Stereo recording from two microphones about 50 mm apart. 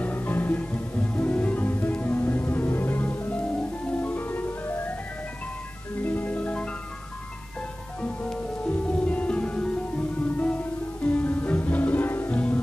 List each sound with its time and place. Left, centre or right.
0.0 s music: left
3.3 s music: left
6.0 s marimba: left
8.9 s music: left
12.3 s music: left